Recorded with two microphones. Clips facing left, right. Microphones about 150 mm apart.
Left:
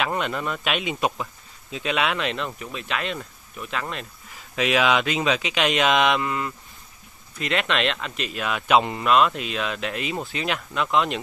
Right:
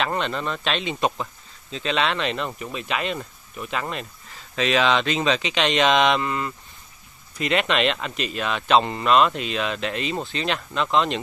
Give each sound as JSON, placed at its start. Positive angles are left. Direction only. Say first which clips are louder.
{"t": 0.0, "sound": "speech", "louder": "right 1 dB", "side_deg": 5}
{"t": 4.3, "sound": "speech", "louder": "even", "side_deg": 10}